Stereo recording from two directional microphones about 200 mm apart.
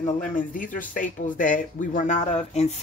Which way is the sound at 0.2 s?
40° left (ahead or behind).